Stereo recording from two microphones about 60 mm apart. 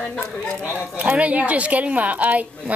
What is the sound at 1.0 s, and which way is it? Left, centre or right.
A woman's voice, right.